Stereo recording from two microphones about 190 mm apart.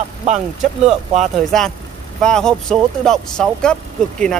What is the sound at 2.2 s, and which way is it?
Speech, 5° left (ahead or behind).